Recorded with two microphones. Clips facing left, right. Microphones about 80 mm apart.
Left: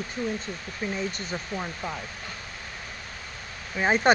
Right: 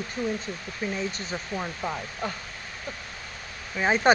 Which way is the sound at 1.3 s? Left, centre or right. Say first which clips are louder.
Right 1 dB; centre.